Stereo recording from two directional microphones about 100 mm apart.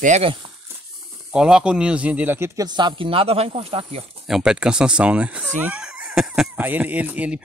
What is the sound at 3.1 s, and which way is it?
Speech, 75° right (ahead or behind).